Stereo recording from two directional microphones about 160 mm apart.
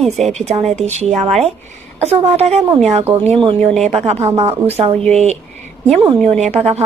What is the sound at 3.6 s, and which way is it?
Speech, 5° left (ahead or behind).